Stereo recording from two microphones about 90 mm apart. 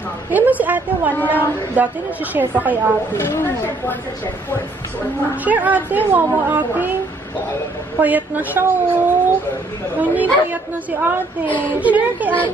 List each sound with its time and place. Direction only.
0.3 s a woman's voice: 20° right (ahead or behind)
1.1 s speech: 20° left (ahead or behind)
1.8 s a woman's voice: 15° right (ahead or behind)
3.2 s speech: 25° left (ahead or behind)
5.4 s a woman's voice: 20° right (ahead or behind)
8.0 s a woman's voice: 20° right (ahead or behind)
11.4 s speech: 15° left (ahead or behind)
11.8 s speech: 15° right (ahead or behind)